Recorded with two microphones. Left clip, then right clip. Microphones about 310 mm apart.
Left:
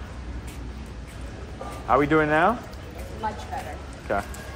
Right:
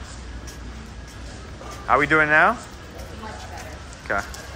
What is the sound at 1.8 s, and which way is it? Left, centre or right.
Speech, centre.